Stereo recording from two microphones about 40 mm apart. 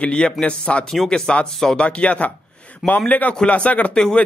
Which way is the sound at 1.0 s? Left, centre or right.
Centre.